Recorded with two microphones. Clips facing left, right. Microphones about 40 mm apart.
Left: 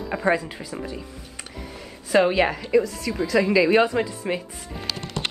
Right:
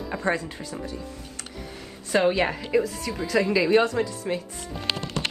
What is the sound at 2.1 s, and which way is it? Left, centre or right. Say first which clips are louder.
Speech: left 3 dB; centre.